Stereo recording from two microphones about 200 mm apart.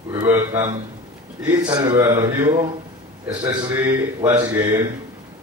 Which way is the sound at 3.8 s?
10° right (ahead or behind).